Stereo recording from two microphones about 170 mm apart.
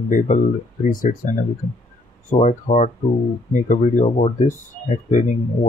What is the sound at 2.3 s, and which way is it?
Speech, 45° left (ahead or behind).